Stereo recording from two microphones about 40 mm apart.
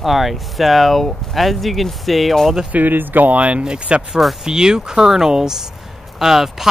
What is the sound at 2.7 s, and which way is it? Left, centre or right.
Speech, right.